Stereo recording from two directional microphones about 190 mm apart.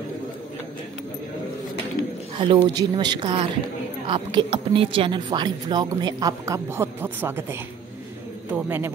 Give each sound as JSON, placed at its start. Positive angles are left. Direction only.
{"t": 2.3, "sound": "a man's voice", "side_deg": -25}